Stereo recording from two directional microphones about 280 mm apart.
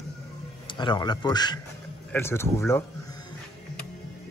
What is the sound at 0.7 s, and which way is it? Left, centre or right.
A man's voice, centre.